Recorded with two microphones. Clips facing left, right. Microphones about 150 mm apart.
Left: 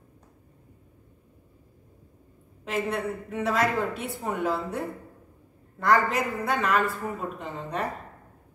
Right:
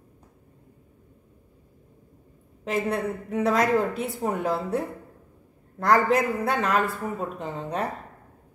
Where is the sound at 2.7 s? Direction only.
40° right (ahead or behind).